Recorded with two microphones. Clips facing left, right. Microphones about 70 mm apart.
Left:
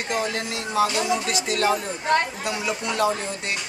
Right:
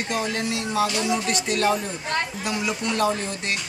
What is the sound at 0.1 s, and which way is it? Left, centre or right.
A child's voice, centre.